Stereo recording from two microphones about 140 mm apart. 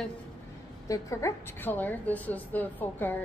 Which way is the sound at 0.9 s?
20° left (ahead or behind).